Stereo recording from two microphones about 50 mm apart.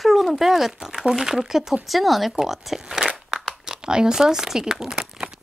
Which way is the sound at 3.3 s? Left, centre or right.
Centre.